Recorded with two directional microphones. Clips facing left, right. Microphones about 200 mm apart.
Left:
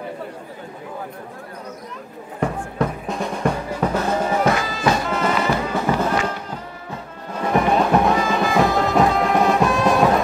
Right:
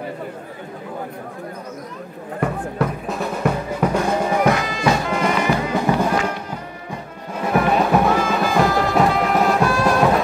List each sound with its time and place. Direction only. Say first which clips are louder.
2.8 s music: even; 5° right (ahead or behind)